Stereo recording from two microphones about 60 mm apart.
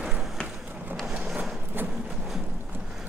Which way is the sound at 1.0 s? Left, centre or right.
Centre.